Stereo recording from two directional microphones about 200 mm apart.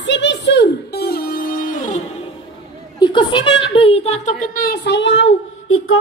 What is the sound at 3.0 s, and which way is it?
A woman's voice, 25° left (ahead or behind).